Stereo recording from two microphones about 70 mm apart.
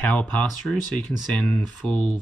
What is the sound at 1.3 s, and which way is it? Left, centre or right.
Speech, left.